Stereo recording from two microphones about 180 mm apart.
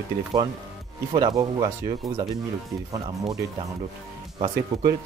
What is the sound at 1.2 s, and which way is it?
Speech, 25° right (ahead or behind).